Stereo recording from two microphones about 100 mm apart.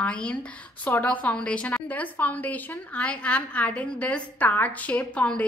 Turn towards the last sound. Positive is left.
turn(degrees=10)  # may be behind; listen again after turning